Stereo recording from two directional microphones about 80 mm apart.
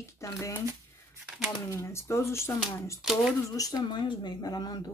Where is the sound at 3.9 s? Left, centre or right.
Left.